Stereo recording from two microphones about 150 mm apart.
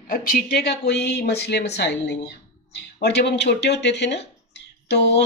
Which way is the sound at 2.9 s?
90° left.